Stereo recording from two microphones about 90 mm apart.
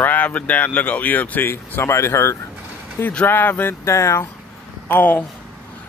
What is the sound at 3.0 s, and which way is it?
Speech, 20° left (ahead or behind).